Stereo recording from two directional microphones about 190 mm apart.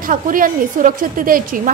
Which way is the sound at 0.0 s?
45° right (ahead or behind).